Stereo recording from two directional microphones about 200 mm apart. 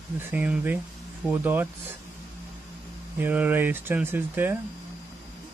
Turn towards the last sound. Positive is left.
turn(degrees=-10)  # may be behind; listen again after turning